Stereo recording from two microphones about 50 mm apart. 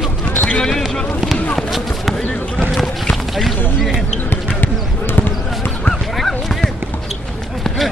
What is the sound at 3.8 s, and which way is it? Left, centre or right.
Basketball bounce, centre.